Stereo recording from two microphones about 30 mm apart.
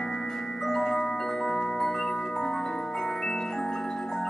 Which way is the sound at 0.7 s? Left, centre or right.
Centre.